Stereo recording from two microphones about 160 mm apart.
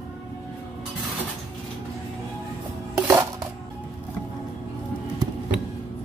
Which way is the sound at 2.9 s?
20° right (ahead or behind).